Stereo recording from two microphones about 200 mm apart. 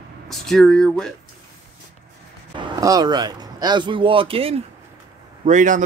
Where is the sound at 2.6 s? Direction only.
20° right (ahead or behind).